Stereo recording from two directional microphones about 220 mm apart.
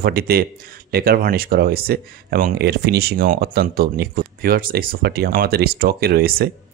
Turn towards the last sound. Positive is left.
turn(degrees=-45)  # may be behind; listen again after turning